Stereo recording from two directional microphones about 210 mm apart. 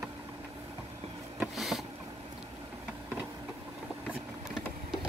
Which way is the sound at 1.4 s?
Centre (ahead or behind).